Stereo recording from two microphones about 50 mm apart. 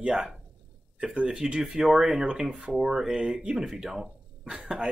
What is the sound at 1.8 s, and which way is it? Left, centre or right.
Speech, centre.